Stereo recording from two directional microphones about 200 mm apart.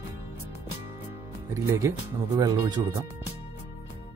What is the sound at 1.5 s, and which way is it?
Speech, 15° right (ahead or behind).